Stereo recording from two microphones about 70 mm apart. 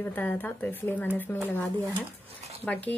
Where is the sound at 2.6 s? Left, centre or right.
Left.